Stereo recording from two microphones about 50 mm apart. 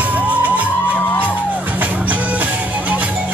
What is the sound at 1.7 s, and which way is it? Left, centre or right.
Music, right.